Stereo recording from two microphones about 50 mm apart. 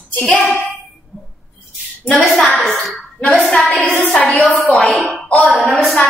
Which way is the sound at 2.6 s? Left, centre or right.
Centre.